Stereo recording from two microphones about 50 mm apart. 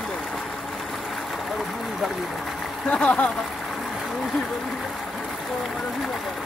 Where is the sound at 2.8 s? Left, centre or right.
Left.